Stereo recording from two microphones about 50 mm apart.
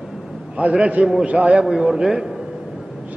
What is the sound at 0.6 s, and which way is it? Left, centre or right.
A man's voice, right.